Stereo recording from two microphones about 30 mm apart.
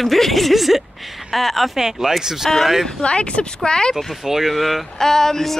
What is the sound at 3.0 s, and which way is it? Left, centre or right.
Speech, left.